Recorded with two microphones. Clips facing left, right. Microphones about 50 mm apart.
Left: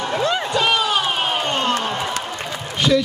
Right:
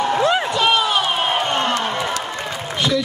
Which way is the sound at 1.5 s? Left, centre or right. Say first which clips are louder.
Right 1 dB; right.